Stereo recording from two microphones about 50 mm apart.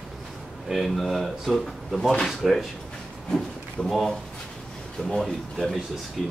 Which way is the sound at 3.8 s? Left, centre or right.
Centre.